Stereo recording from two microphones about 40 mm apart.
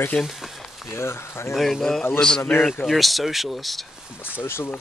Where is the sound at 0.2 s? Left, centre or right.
Centre.